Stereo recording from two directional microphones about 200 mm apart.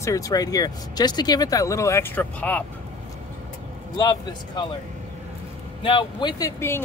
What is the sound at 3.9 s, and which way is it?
Speech, 20° left (ahead or behind).